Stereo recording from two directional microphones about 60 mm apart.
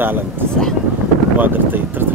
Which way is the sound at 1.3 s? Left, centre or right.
Right.